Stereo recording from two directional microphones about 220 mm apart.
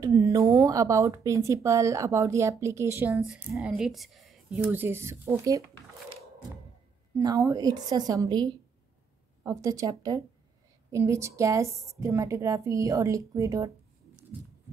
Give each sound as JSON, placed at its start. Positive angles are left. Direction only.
{"t": 0.0, "sound": "speech", "side_deg": -15}
{"t": 7.2, "sound": "speech", "side_deg": -15}